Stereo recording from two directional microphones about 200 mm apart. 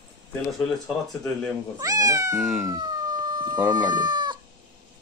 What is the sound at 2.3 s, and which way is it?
Speech, centre (ahead or behind).